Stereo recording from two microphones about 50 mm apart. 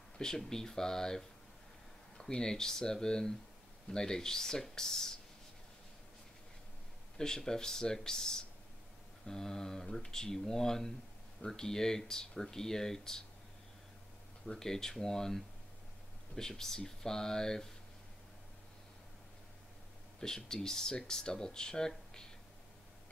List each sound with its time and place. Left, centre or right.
0.2 s speech: centre
7.2 s speech: centre
14.4 s speech: centre
20.2 s speech: centre